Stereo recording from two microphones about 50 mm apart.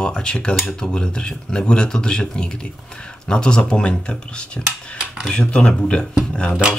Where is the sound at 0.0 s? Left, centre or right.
Centre.